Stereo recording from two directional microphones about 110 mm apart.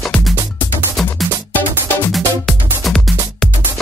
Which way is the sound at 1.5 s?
20° left (ahead or behind).